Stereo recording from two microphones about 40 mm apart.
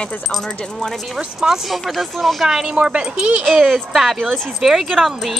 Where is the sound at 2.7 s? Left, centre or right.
Right.